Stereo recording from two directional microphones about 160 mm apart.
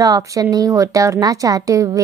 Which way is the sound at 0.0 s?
20° right (ahead or behind).